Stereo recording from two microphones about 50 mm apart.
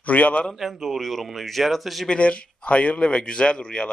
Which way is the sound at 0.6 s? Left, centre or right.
Centre.